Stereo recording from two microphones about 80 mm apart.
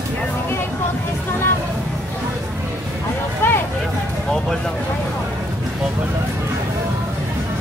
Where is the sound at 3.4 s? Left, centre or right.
Left.